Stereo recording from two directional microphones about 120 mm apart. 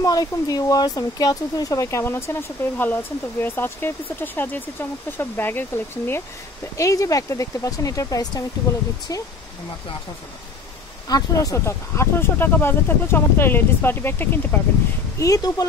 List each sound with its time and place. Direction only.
0.0 s speech: 30° left (ahead or behind)
11.1 s speech: 30° left (ahead or behind)
15.1 s speech: 30° left (ahead or behind)